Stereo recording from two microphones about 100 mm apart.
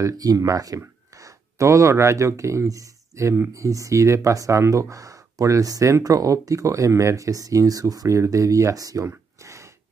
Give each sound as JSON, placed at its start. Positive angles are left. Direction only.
{"t": 0.0, "sound": "speech", "side_deg": -35}